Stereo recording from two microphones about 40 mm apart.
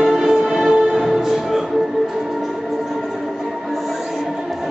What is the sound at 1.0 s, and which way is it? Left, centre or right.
Music, centre.